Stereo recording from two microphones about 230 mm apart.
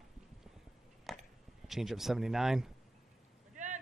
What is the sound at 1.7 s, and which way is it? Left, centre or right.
Speech, centre.